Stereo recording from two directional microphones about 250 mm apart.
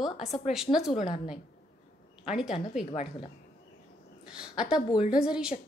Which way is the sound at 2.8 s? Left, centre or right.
Left.